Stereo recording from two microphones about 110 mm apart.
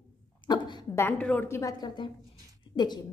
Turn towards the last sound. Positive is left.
turn(degrees=40)  # may be behind; listen again after turning